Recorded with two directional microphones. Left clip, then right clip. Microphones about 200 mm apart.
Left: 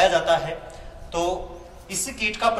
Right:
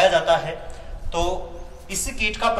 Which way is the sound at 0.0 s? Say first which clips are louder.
Right 2 dB; 20° left (ahead or behind).